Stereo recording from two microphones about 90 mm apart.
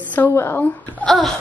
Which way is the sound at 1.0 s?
Centre (ahead or behind).